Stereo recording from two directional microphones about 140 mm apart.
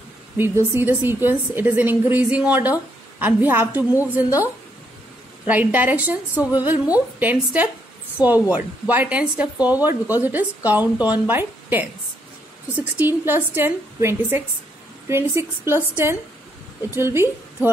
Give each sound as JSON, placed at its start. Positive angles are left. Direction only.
{"t": 0.7, "sound": "speech", "side_deg": -15}
{"t": 5.5, "sound": "a woman's voice", "side_deg": -10}